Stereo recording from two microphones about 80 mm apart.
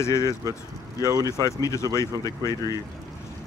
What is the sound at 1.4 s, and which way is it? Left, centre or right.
Speech, left.